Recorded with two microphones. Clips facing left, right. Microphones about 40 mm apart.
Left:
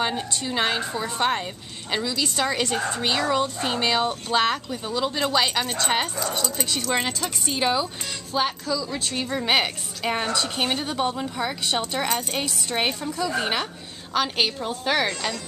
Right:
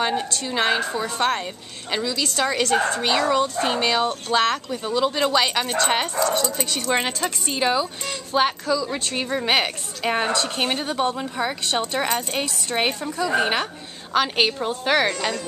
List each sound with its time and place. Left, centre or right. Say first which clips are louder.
0.3 s a woman's voice: right 3 dB; centre
1.0 s speech: left 1 dB; centre
1.9 s a woman's voice: right 1 dB; centre
7.2 s a woman's voice: right 2 dB; centre
8.1 s a woman's voice: right 6 dB; centre